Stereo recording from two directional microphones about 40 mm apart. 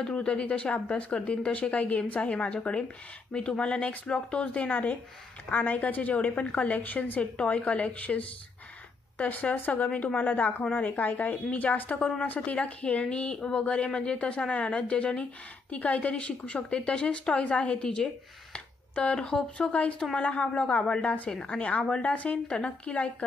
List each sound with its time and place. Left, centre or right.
0.0 s a woman's voice: left
7.2 s a woman's voice: left
12.3 s a woman's voice: left
17.8 s speech: left
19.7 s a woman's voice: left
21.5 s a woman's voice: left
22.5 s speech: left